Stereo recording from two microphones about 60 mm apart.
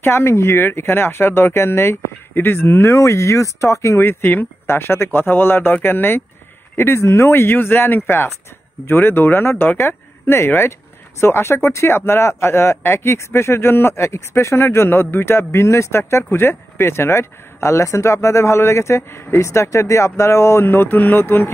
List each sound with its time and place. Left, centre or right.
0.0 s speech: left
2.9 s speech: left